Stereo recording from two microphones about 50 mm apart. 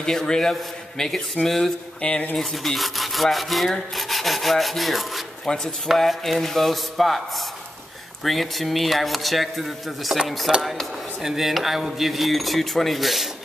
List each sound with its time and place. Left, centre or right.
0.0 s a man's voice: centre
2.0 s speech: centre
2.3 s speech: centre
5.4 s speech: centre
5.9 s speech: centre